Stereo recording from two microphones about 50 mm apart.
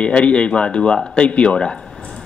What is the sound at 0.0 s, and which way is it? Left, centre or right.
A man's voice, left.